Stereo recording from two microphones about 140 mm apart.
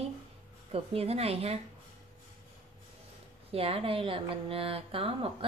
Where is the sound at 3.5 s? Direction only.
45° right (ahead or behind).